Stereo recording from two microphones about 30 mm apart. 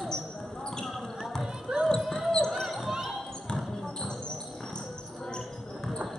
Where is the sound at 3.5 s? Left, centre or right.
Left.